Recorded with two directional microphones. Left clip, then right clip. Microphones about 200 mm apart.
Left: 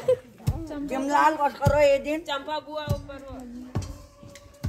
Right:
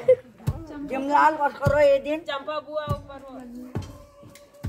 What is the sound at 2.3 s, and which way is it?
Speech, 20° left (ahead or behind).